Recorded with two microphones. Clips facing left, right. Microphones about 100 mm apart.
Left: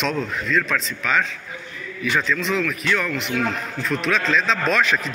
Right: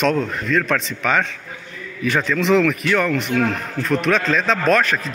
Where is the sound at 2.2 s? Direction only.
65° right (ahead or behind).